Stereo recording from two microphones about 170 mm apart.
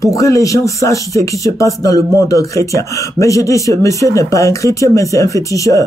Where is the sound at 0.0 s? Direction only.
20° left (ahead or behind).